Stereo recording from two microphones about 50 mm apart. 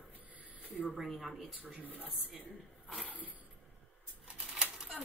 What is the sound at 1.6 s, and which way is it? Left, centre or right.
Speech, right.